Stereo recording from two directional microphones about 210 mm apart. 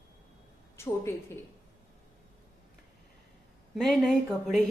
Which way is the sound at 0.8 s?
10° left (ahead or behind).